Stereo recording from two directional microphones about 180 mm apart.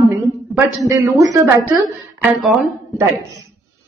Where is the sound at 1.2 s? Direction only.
20° right (ahead or behind).